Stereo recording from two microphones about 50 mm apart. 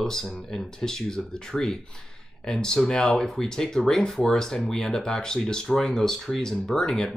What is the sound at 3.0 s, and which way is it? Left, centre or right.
Speech, centre.